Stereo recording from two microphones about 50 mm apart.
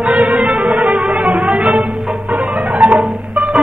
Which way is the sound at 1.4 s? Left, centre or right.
Right.